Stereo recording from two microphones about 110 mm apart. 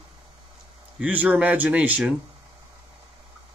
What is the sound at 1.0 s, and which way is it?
Speech, 10° right (ahead or behind).